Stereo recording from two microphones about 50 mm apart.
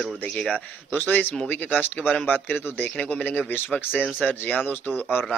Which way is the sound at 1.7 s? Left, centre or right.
Left.